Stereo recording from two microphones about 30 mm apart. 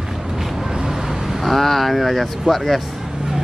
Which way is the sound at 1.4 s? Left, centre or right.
Centre.